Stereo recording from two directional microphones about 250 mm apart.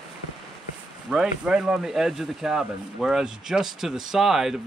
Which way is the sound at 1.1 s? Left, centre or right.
Centre.